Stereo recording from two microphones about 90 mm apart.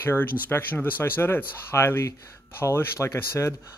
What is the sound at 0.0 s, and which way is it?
Speech, 25° left (ahead or behind).